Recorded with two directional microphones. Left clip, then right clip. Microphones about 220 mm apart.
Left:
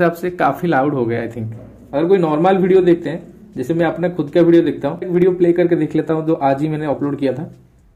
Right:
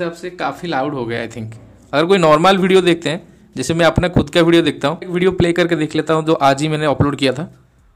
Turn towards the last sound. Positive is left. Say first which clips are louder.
# right 3 dB
turn(degrees=-30)  # may be behind; listen again after turning